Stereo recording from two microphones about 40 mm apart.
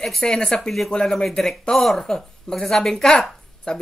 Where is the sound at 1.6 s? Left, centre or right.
Centre.